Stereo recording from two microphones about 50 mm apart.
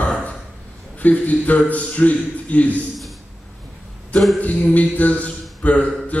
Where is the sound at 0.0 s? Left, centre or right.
Left.